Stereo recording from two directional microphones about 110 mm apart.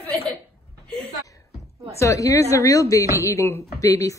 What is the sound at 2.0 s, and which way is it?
Speech, 30° left (ahead or behind).